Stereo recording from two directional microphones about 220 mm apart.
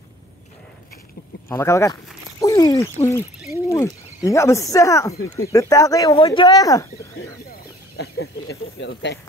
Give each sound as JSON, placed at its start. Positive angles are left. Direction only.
{"t": 1.5, "sound": "speech", "side_deg": 10}
{"t": 8.5, "sound": "speech", "side_deg": 55}